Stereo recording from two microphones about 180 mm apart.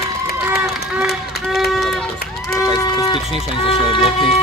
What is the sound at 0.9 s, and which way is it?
Run, centre (ahead or behind).